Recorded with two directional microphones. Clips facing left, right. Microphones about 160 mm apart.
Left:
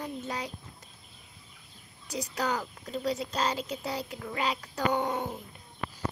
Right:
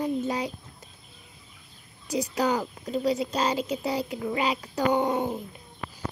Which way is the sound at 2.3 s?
10° right (ahead or behind).